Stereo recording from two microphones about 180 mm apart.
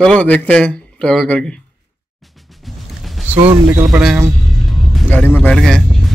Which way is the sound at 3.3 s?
35° right (ahead or behind).